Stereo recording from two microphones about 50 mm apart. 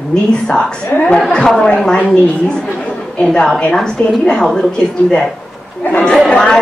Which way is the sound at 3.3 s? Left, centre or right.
Centre.